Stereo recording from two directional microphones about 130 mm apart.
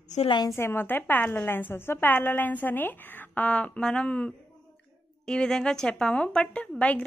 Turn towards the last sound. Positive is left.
turn(degrees=10)  # may be behind; listen again after turning